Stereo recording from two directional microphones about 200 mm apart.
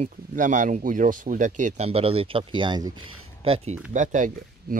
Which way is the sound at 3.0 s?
90° right.